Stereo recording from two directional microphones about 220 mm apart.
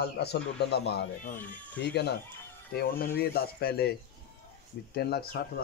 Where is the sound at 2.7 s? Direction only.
40° left (ahead or behind).